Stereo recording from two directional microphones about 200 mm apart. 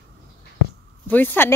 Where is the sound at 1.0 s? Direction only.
10° left (ahead or behind).